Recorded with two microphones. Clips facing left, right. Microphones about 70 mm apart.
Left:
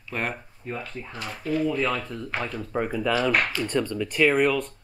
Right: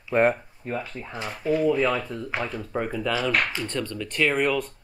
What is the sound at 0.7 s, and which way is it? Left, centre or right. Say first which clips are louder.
Speech: right 4 dB; centre.